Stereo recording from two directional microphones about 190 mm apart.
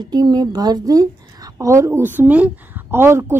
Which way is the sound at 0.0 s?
20° right (ahead or behind).